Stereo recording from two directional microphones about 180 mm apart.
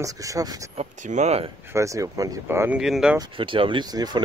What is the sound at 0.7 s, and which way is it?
Speech, 40° right (ahead or behind).